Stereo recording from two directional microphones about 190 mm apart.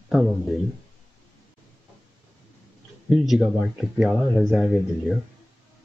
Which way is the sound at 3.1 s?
5° right (ahead or behind).